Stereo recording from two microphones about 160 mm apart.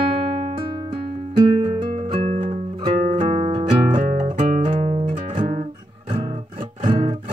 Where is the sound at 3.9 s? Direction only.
50° right (ahead or behind).